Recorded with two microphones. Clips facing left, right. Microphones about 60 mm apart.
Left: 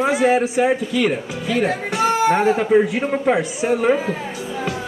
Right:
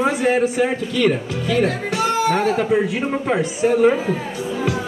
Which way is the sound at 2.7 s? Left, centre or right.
Centre.